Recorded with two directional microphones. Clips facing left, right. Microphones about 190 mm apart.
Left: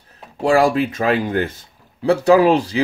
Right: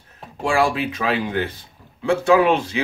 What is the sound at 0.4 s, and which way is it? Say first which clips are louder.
Speech: left 5 dB; 40° left (ahead or behind).